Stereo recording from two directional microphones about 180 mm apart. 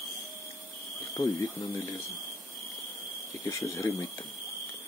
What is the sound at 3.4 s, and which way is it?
Speech, 15° left (ahead or behind).